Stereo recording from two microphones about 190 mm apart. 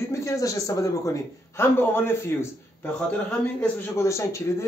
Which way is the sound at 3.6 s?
15° left (ahead or behind).